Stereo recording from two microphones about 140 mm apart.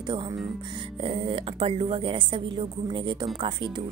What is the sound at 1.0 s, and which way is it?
Speech, 40° right (ahead or behind).